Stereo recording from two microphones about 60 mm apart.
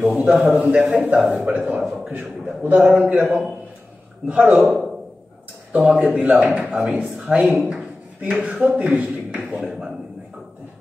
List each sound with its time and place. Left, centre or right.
0.0 s a man's voice: centre
5.9 s speech: centre
9.6 s a man's voice: centre